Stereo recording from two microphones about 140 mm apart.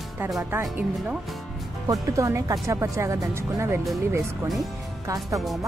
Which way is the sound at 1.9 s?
25° right (ahead or behind).